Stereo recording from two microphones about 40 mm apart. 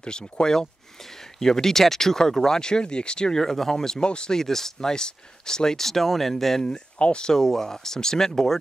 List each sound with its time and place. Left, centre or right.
0.0 s speech: centre
3.4 s speech: centre
7.0 s speech: left
7.3 s speech: centre